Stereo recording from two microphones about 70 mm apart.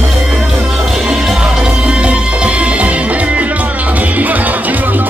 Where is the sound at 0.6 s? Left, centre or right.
Centre.